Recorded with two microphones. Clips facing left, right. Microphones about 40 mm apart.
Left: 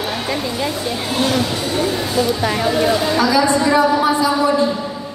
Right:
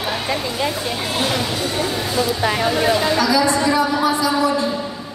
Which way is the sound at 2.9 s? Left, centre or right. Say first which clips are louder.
Even; centre.